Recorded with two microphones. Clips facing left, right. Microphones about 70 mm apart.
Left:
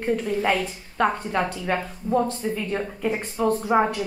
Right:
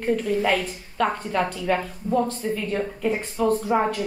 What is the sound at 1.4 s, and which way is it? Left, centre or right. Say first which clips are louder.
A woman's voice: right 3 dB; centre.